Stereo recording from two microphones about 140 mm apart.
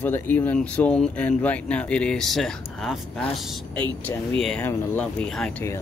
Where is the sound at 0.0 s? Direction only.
15° left (ahead or behind).